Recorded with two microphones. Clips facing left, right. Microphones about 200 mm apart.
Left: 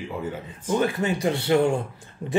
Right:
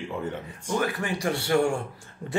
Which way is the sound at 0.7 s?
25° left (ahead or behind).